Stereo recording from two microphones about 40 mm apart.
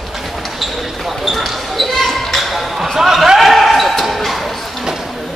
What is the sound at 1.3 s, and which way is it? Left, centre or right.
Basketball bounce, centre.